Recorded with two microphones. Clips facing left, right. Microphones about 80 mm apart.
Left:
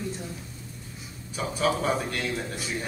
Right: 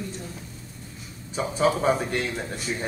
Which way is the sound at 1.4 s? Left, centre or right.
Right.